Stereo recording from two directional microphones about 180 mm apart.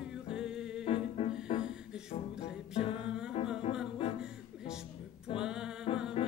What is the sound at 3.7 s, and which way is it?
Music, 30° left (ahead or behind).